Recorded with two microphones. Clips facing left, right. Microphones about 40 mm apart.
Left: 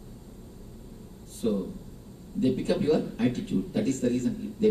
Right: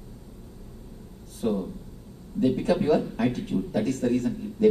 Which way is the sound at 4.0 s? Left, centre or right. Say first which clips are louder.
Right 2 dB; right.